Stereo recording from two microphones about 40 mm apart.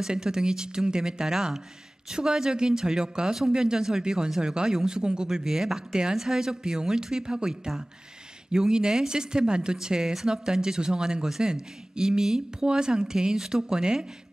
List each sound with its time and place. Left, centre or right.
0.0 s speech: centre